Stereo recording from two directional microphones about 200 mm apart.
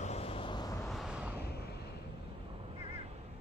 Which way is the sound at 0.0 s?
30° left (ahead or behind).